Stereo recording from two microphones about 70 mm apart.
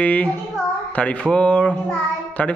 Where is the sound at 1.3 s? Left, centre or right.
Centre.